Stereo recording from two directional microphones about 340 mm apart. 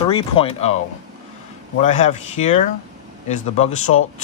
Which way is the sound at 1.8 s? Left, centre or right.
Centre.